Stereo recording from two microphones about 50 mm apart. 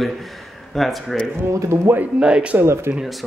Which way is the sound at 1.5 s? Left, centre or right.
Right.